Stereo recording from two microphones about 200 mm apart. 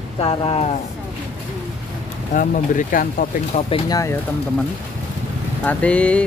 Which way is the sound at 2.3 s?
40° left (ahead or behind).